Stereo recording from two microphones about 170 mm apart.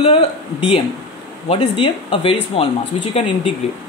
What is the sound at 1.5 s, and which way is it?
Speech, 30° left (ahead or behind).